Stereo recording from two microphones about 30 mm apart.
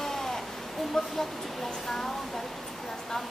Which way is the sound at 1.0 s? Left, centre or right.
Centre.